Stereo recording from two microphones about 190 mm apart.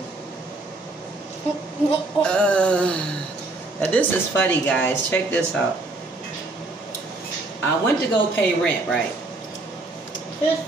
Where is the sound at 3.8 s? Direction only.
10° left (ahead or behind).